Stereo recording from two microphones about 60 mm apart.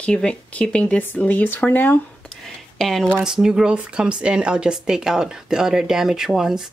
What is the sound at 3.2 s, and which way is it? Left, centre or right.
Speech, centre.